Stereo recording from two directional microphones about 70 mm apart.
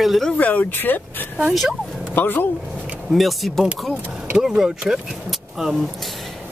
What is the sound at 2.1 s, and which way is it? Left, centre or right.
Speech, left.